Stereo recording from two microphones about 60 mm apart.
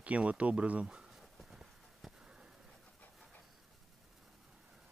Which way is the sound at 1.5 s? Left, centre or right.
Centre.